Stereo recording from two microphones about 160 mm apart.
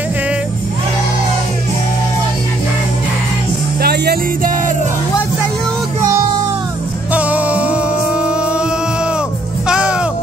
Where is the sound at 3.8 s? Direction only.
75° right (ahead or behind).